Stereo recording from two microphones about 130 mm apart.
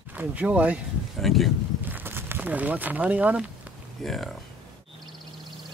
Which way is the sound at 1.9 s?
15° right (ahead or behind).